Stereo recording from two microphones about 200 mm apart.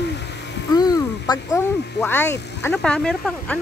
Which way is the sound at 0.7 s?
20° left (ahead or behind).